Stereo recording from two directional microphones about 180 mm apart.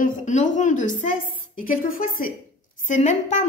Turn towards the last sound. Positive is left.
turn(degrees=45)  # may be behind; listen again after turning